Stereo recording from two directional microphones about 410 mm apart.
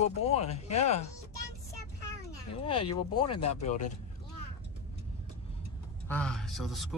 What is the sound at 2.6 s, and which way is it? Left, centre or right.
Speech, centre.